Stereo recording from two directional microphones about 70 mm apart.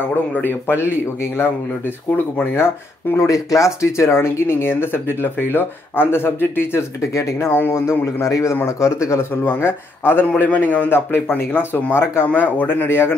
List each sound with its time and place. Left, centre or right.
0.3 s a man's voice: left
2.5 s speech: left
3.3 s speech: left
9.3 s speech: left
10.2 s a man's voice: left
12.3 s a man's voice: left